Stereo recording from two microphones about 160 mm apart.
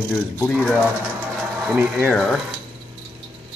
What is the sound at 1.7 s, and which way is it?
Speech, 10° right (ahead or behind).